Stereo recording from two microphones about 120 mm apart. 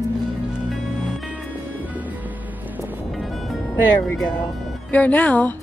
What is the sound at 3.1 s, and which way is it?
Music, centre (ahead or behind).